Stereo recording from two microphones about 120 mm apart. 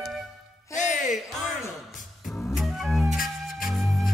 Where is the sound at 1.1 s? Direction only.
Centre (ahead or behind).